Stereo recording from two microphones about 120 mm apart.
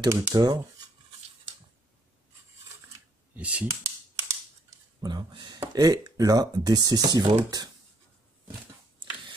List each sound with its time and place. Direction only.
0.0 s speech: 30° right (ahead or behind)
3.3 s speech: 10° right (ahead or behind)
3.6 s computer keyboard: 25° right (ahead or behind)
5.8 s speech: 30° right (ahead or behind)